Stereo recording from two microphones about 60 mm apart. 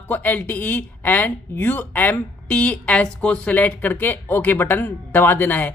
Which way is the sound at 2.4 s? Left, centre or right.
Centre.